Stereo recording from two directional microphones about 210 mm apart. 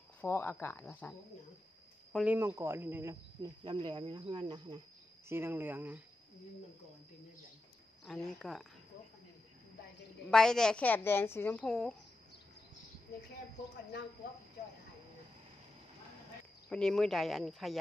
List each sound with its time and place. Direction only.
0.2 s speech: 10° left (ahead or behind)
2.1 s speech: 10° right (ahead or behind)
3.6 s speech: 20° right (ahead or behind)
5.3 s speech: 10° right (ahead or behind)
8.0 s a woman's voice: centre (ahead or behind)
10.3 s a woman's voice: 5° left (ahead or behind)
16.6 s a woman's voice: centre (ahead or behind)